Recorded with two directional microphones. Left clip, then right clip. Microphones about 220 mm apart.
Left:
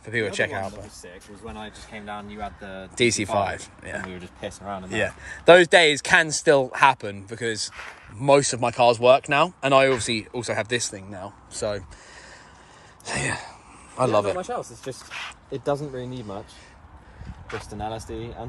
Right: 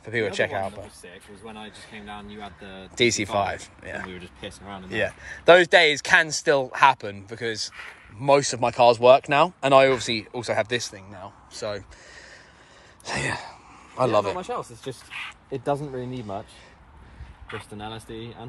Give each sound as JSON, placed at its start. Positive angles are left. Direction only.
{"t": 0.0, "sound": "speech", "side_deg": 10}
{"t": 1.0, "sound": "speech", "side_deg": -15}
{"t": 1.7, "sound": "speech", "side_deg": 0}
{"t": 3.0, "sound": "speech", "side_deg": 10}
{"t": 3.9, "sound": "speech", "side_deg": 0}
{"t": 4.8, "sound": "speech", "side_deg": 15}
{"t": 7.7, "sound": "speech", "side_deg": 5}
{"t": 8.3, "sound": "speech", "side_deg": 15}
{"t": 13.0, "sound": "a sound", "side_deg": 10}
{"t": 17.5, "sound": "speech", "side_deg": 5}